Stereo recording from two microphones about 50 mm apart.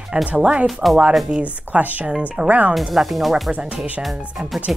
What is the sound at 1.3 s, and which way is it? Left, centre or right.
Speech, right.